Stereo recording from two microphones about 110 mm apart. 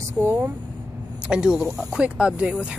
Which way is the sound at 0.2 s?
15° right (ahead or behind).